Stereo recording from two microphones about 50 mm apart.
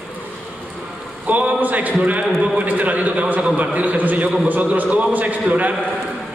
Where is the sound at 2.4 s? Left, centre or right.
Right.